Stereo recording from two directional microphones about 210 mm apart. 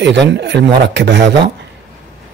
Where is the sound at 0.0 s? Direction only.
60° right (ahead or behind).